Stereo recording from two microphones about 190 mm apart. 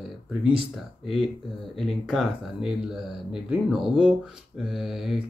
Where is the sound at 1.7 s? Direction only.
Centre (ahead or behind).